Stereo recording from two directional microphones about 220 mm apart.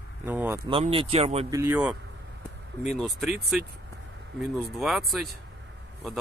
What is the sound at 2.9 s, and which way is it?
Speech, centre (ahead or behind).